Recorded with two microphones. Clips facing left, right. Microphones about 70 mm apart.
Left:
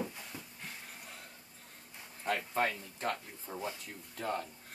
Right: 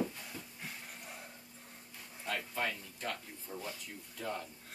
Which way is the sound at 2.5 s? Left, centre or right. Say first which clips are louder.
Left 5 dB; left.